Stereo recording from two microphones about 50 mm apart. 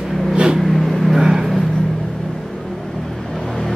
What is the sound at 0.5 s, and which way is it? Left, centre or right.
Vehicle, centre.